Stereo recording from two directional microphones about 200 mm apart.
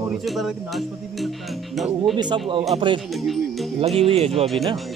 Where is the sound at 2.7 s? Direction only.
25° right (ahead or behind).